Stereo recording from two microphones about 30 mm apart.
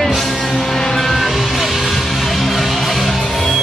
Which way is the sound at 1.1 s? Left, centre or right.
Centre.